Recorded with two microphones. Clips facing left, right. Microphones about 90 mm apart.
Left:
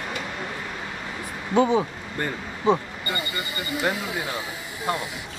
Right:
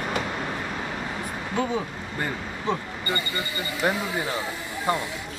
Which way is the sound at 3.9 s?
10° right (ahead or behind).